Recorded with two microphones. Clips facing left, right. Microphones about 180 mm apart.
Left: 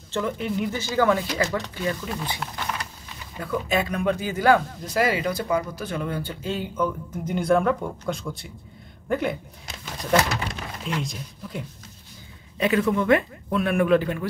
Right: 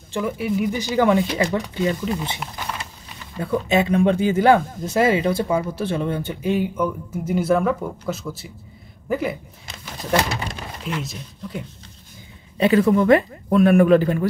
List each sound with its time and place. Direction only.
0.1 s speech: 10° right (ahead or behind)
2.4 s speech: 10° right (ahead or behind)
3.3 s speech: 25° right (ahead or behind); by 9.4 s 5° right (ahead or behind)
10.8 s speech: 5° right (ahead or behind)
12.5 s speech: 35° right (ahead or behind)